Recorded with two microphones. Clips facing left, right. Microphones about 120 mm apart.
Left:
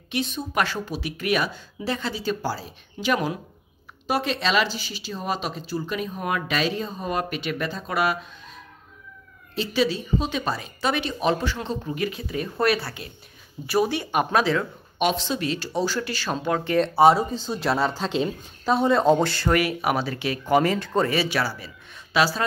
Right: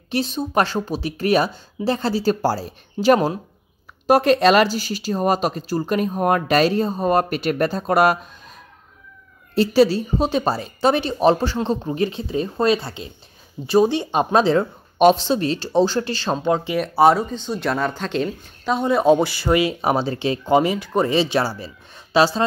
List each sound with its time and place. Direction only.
0.1 s speech: 35° right (ahead or behind)
4.1 s speech: 50° right (ahead or behind)
9.6 s speech: 40° right (ahead or behind); by 18.9 s centre (ahead or behind)
18.9 s speech: 10° right (ahead or behind)
19.6 s speech: 25° right (ahead or behind)